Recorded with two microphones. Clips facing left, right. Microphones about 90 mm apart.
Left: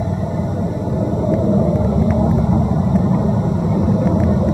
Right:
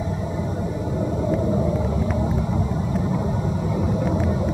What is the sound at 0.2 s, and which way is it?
Vehicle, 15° left (ahead or behind).